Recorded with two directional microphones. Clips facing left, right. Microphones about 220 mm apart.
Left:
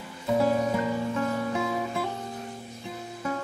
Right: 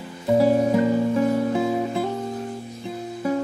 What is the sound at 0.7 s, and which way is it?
Music, 30° right (ahead or behind).